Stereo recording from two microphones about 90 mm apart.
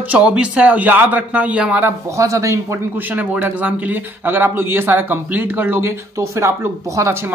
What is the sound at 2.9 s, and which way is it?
Speech, 20° right (ahead or behind).